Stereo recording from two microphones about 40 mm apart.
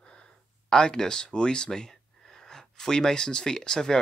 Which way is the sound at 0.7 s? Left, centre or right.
Centre.